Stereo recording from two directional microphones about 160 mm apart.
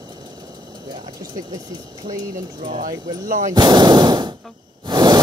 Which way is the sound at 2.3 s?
55° right (ahead or behind).